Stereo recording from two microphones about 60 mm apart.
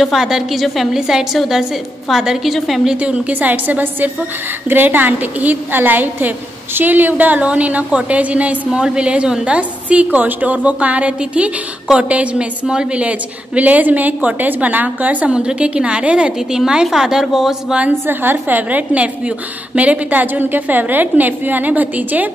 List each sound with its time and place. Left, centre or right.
0.0 s a woman's voice: centre
3.0 s a woman's voice: right; by 17.7 s centre
18.0 s a woman's voice: right